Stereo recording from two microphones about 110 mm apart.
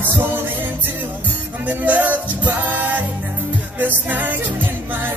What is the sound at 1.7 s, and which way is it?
Music, 15° right (ahead or behind).